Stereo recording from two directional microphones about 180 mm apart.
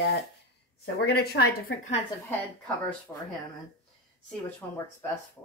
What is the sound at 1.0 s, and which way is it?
Speech, 60° left (ahead or behind).